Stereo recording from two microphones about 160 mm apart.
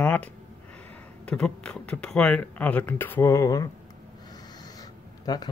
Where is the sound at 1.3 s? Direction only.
5° left (ahead or behind).